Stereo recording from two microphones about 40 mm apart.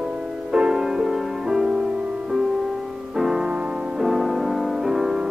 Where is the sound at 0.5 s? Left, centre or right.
Right.